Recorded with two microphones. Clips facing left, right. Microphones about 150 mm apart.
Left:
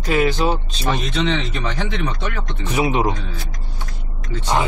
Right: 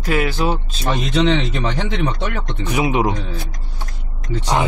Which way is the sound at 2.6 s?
15° right (ahead or behind).